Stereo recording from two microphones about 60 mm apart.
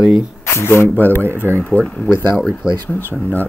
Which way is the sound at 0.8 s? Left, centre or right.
Left.